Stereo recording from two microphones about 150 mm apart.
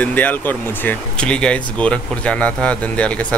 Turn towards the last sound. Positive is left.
turn(degrees=10)  # may be behind; listen again after turning